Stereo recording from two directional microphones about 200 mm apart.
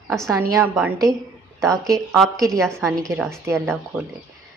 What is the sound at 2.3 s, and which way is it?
Speech, 15° right (ahead or behind).